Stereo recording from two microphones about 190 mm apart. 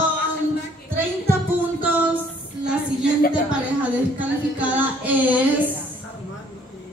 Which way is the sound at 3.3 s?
5° right (ahead or behind).